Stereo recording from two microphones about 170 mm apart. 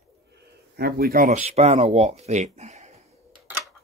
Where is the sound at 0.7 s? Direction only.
65° right (ahead or behind).